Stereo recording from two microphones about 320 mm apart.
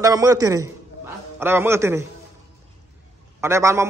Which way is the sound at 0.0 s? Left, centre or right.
Centre.